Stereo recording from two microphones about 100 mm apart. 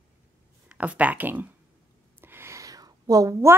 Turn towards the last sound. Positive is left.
turn(degrees=-30)  # may be behind; listen again after turning